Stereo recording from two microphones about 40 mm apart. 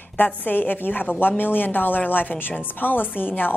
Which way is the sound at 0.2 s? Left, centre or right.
Left.